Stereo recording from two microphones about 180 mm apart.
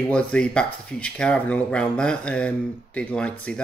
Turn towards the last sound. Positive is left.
turn(degrees=5)  # may be behind; listen again after turning